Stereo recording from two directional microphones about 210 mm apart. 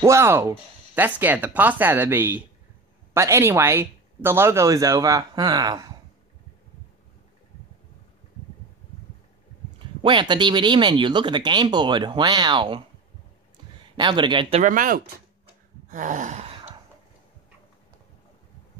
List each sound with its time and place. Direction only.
0.0 s speech: 10° right (ahead or behind)
10.0 s speech: 20° right (ahead or behind)
13.9 s speech: 20° right (ahead or behind)
14.6 s speech: 40° right (ahead or behind)
15.9 s gasp: 40° right (ahead or behind)